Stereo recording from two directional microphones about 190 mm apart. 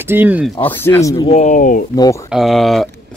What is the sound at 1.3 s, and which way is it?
Speech, 40° left (ahead or behind).